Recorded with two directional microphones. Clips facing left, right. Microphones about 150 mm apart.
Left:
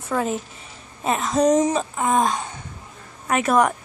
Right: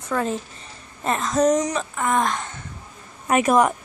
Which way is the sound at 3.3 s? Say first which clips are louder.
Right 1 dB; 15° right (ahead or behind).